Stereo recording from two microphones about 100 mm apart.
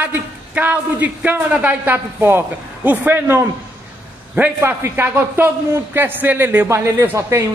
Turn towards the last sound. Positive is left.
turn(degrees=-30)  # may be behind; listen again after turning